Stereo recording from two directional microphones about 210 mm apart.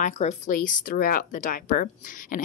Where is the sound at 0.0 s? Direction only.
35° left (ahead or behind).